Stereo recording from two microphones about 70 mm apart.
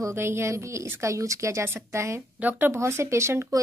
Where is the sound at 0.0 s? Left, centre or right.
Right.